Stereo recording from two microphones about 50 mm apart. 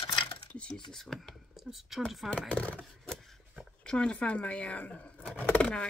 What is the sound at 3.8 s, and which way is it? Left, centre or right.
Speech, centre.